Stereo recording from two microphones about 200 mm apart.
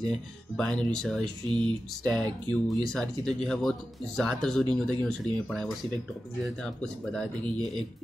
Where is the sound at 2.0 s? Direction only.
5° left (ahead or behind).